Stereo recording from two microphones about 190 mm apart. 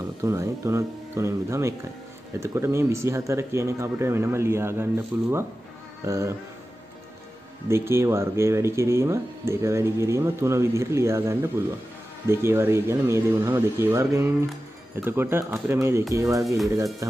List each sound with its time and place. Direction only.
0.2 s speech: 15° right (ahead or behind)
7.6 s speech: 15° right (ahead or behind)